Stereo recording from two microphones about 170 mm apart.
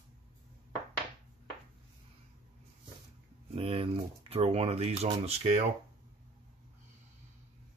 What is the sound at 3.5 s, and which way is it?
Speech, 35° right (ahead or behind).